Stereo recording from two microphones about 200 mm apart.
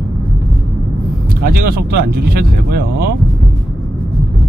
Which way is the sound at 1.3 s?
50° right (ahead or behind).